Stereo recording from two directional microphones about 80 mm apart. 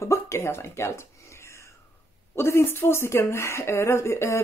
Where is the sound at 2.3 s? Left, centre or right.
Left.